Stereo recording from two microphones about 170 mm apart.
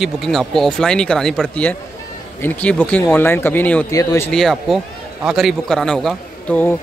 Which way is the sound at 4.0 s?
20° left (ahead or behind).